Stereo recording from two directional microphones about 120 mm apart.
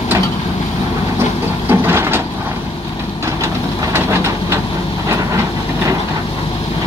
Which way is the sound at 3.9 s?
20° right (ahead or behind).